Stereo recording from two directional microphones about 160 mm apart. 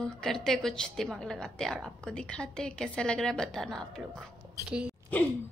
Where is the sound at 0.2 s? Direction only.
5° left (ahead or behind).